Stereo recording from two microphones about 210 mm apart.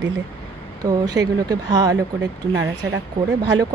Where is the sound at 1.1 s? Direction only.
20° right (ahead or behind).